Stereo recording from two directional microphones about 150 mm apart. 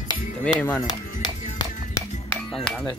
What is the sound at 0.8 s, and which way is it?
Music, 30° left (ahead or behind).